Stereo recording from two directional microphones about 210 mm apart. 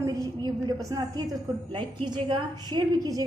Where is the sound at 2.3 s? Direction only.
20° right (ahead or behind).